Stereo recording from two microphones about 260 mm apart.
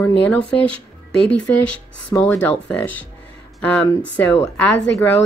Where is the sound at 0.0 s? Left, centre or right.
Centre.